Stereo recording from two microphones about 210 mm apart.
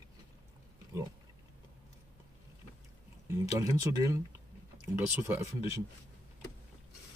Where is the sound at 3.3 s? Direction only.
15° right (ahead or behind).